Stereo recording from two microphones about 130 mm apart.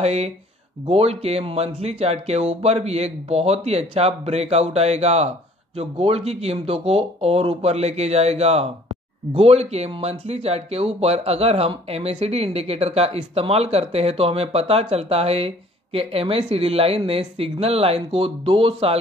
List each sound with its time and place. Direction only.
0.0 s speech: 55° right (ahead or behind)